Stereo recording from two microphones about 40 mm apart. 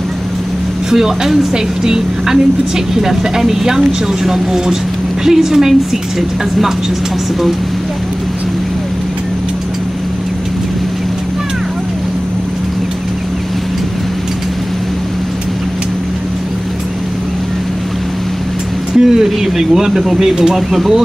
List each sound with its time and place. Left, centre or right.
0.8 s speech: centre
18.9 s speech: centre
20.7 s speech: centre